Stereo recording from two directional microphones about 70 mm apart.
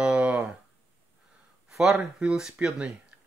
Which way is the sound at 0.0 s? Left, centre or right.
Centre.